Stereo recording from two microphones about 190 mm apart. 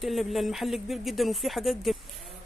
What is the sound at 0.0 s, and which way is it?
Speech, centre (ahead or behind).